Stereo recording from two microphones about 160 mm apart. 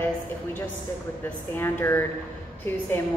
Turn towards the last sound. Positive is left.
turn(degrees=15)  # may be behind; listen again after turning